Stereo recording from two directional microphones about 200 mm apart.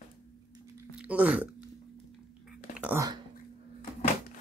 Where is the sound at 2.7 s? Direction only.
10° right (ahead or behind).